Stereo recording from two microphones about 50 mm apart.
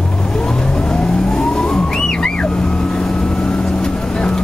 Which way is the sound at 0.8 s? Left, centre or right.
Centre.